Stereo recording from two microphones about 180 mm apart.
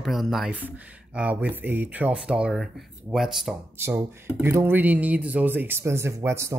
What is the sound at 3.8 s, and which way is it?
Speech, 15° right (ahead or behind).